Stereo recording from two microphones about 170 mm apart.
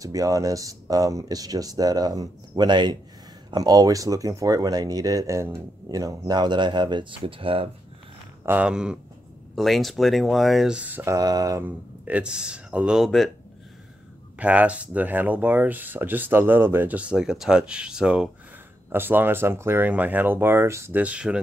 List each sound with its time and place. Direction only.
0.0 s speech: 20° right (ahead or behind)
8.5 s speech: 5° right (ahead or behind)
11.1 s speech: 20° right (ahead or behind); by 13.3 s centre (ahead or behind)
14.4 s speech: 10° right (ahead or behind)